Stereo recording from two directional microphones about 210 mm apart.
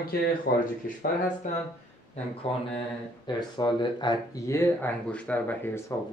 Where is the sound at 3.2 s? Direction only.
20° left (ahead or behind).